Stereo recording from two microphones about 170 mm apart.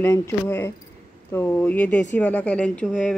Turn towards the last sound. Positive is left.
turn(degrees=5)  # may be behind; listen again after turning